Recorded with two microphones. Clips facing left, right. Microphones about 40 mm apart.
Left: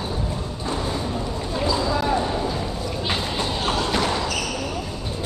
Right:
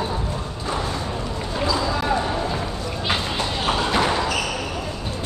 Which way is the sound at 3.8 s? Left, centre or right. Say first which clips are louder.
Right 4 dB; centre.